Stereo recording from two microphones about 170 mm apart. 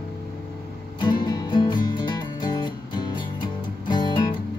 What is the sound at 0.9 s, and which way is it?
Music, 25° left (ahead or behind).